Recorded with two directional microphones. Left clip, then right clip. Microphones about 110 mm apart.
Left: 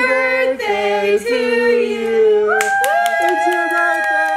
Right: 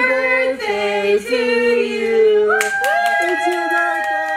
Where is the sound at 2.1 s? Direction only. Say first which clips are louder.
Even; 5° left (ahead or behind).